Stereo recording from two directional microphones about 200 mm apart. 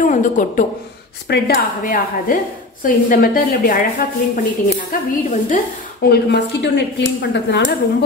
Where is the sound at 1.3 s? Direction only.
60° left (ahead or behind).